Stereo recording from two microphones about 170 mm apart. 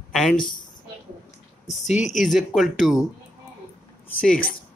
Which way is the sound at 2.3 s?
Centre (ahead or behind).